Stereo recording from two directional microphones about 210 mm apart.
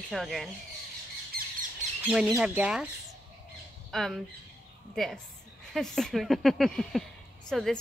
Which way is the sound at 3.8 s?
Centre (ahead or behind).